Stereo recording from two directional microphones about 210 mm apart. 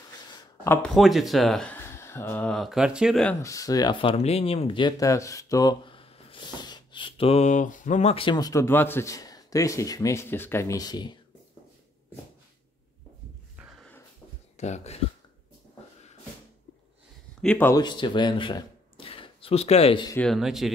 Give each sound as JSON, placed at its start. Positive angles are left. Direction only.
{"t": 0.8, "sound": "speech", "side_deg": 0}
{"t": 3.3, "sound": "speech", "side_deg": 15}
{"t": 14.6, "sound": "a sound", "side_deg": 30}
{"t": 17.4, "sound": "speech", "side_deg": 5}
{"t": 17.8, "sound": "speech", "side_deg": 20}
{"t": 20.2, "sound": "speech", "side_deg": 0}